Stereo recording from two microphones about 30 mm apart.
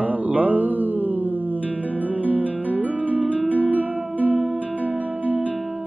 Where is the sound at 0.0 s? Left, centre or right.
Right.